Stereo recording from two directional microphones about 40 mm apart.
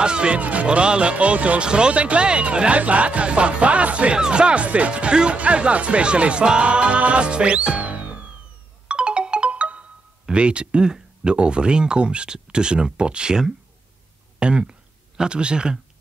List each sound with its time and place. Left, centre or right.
0.0 s speech: right
0.4 s speech: right
0.7 s speech: right
7.8 s music: right
8.8 s ringtone: right
10.2 s speech: right